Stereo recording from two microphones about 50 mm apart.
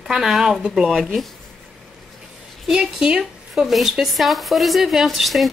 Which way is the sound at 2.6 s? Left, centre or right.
Centre.